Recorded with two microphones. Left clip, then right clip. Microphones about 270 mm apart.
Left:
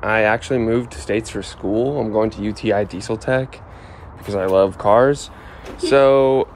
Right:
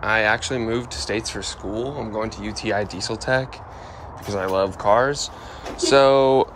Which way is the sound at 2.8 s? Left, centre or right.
Right.